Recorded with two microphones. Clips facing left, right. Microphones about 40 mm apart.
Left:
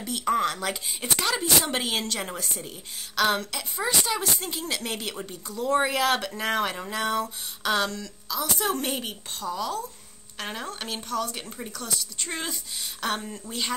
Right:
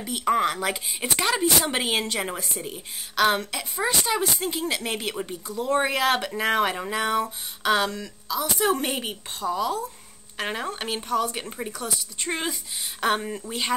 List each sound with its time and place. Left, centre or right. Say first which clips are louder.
0.0 s speech: right 2 dB; centre